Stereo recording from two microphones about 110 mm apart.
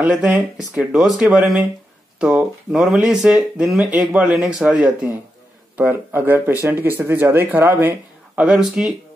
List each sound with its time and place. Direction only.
0.0 s speech: 10° right (ahead or behind)
8.4 s speech: 5° right (ahead or behind)